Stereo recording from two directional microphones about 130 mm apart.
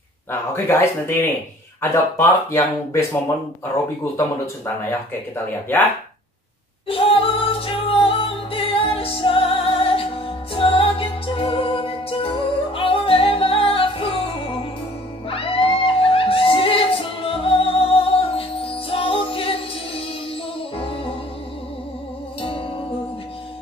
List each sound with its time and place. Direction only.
0.3 s speech: 20° left (ahead or behind)
6.9 s music: 45° left (ahead or behind)
20.7 s music: 45° left (ahead or behind)